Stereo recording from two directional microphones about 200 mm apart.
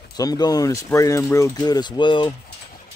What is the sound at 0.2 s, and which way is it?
Speech, 20° left (ahead or behind).